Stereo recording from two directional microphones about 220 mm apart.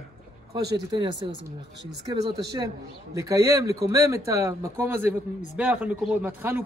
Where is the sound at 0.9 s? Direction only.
20° right (ahead or behind).